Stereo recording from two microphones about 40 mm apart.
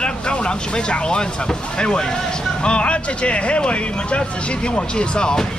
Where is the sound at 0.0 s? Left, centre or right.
Left.